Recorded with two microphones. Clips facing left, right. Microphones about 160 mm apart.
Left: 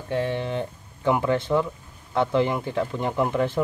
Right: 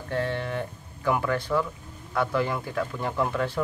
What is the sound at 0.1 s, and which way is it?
Speech, 15° left (ahead or behind).